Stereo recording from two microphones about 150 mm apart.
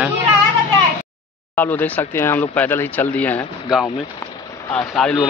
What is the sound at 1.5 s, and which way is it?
Speech, 10° left (ahead or behind).